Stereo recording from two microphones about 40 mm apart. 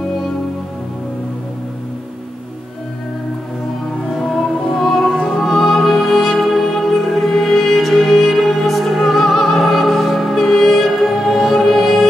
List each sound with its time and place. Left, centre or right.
4.1 s music: centre
5.1 s music: left
5.4 s music: centre